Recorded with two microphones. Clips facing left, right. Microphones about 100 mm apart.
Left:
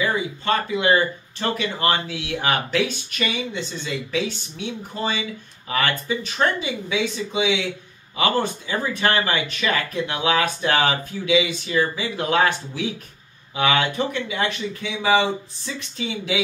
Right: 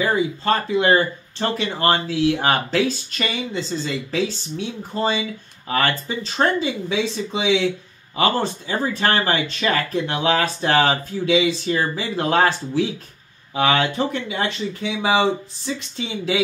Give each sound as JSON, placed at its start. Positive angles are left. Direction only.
{"t": 0.0, "sound": "speech", "side_deg": -35}